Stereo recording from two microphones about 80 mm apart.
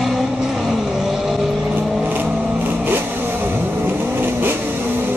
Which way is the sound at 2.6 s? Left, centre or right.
Right.